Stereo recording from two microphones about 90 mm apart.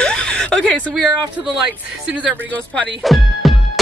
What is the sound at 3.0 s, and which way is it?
Music, centre (ahead or behind).